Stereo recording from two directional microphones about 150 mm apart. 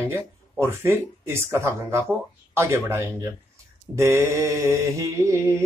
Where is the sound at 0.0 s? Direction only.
15° right (ahead or behind).